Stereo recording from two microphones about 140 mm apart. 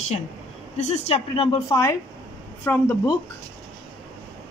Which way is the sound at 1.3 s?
35° left (ahead or behind).